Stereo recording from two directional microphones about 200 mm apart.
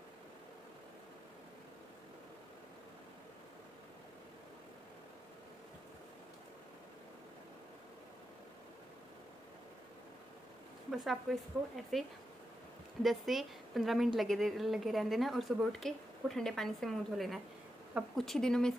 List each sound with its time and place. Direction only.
10.9 s a woman's voice: centre (ahead or behind)
13.0 s a woman's voice: centre (ahead or behind)